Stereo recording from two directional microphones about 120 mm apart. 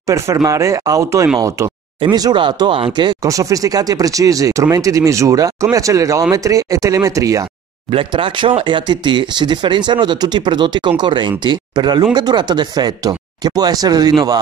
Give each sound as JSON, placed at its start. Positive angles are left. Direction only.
{"t": 0.0, "sound": "speech", "side_deg": -25}
{"t": 3.2, "sound": "speech", "side_deg": -30}
{"t": 7.9, "sound": "speech", "side_deg": -45}